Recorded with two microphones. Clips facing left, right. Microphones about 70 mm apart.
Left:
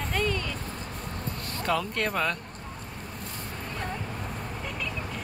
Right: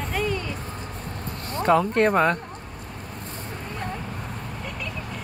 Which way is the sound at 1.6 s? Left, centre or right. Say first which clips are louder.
Right 9 dB; right.